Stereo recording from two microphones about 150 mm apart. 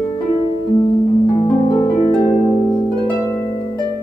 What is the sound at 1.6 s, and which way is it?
Harp, 30° left (ahead or behind).